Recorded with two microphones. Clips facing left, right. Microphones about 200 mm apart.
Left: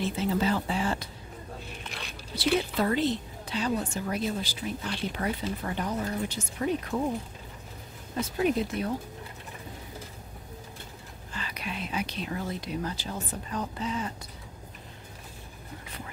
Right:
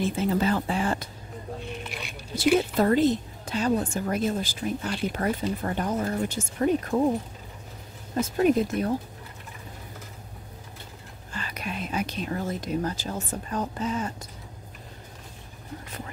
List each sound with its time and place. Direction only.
0.0 s a woman's voice: 50° right (ahead or behind)
2.3 s a woman's voice: 45° right (ahead or behind)
8.2 s a woman's voice: 45° right (ahead or behind)
11.3 s speech: 45° right (ahead or behind)